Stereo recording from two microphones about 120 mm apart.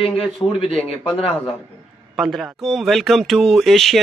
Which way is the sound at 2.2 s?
Centre (ahead or behind).